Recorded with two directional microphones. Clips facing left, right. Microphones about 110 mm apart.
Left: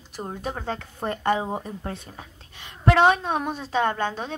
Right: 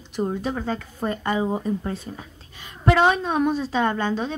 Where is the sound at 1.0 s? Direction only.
60° left (ahead or behind).